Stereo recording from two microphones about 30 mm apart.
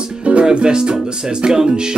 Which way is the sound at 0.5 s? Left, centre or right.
Right.